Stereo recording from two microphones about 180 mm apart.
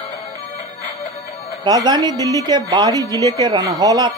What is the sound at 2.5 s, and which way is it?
Speech, 20° right (ahead or behind).